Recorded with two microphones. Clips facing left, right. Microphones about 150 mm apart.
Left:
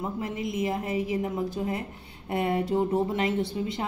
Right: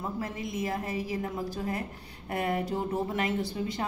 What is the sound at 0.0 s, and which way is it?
A woman's voice, 20° left (ahead or behind).